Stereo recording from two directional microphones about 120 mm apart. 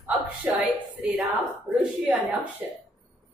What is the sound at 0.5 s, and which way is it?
Speech, 10° right (ahead or behind).